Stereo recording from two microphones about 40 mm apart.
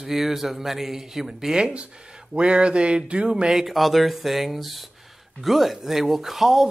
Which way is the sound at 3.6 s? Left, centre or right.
Centre.